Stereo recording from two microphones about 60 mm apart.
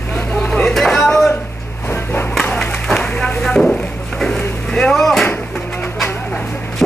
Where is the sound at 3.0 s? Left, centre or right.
Left.